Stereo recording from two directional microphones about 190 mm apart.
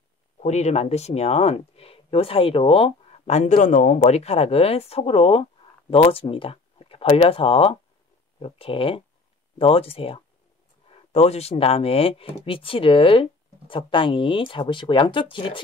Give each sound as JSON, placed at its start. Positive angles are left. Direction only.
{"t": 0.4, "sound": "speech", "side_deg": 35}